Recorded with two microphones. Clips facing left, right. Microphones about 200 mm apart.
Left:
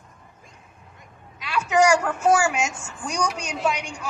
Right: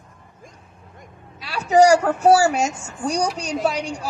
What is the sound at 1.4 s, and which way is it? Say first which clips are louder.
A woman's voice: right 5 dB; 35° right (ahead or behind).